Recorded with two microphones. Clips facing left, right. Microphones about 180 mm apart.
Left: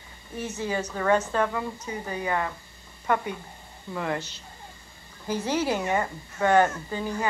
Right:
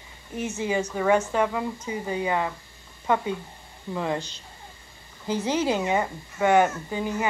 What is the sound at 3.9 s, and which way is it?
A woman's voice, 20° right (ahead or behind).